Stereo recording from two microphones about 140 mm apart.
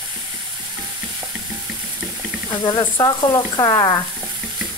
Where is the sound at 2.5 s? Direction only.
35° left (ahead or behind).